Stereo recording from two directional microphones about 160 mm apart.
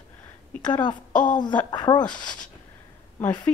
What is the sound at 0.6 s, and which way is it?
Speech, 30° left (ahead or behind).